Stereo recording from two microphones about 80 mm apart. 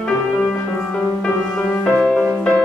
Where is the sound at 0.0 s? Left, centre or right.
Centre.